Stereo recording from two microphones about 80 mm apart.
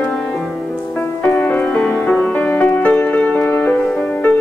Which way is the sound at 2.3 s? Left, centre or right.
Left.